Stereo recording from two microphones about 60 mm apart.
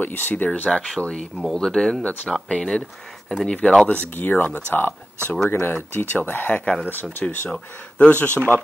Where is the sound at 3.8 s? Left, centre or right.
Left.